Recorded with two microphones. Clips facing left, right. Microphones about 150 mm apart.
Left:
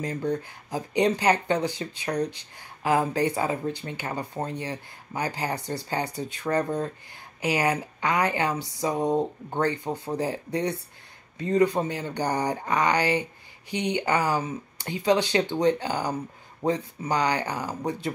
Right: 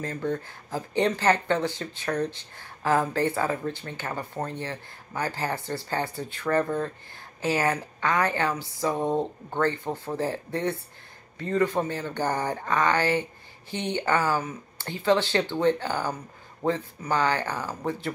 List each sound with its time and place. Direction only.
0.0 s speech: 15° left (ahead or behind)